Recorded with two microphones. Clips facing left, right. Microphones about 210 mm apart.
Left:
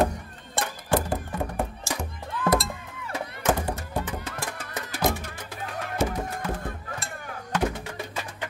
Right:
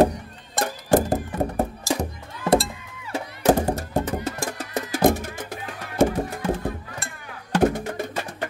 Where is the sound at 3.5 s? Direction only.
45° right (ahead or behind).